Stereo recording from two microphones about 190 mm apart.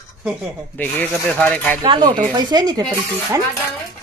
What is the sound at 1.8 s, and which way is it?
Speech, 25° right (ahead or behind).